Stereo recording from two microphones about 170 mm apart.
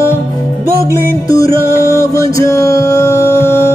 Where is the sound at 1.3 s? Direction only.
15° left (ahead or behind).